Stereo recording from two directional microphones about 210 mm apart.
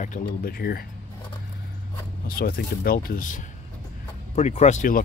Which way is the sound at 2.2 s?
45° left (ahead or behind).